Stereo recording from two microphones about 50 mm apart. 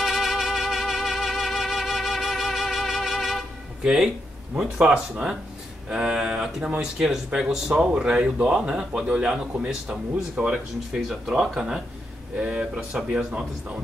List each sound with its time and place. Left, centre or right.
0.0 s music: centre
3.8 s speech: centre
10.9 s speech: centre
12.4 s speech: centre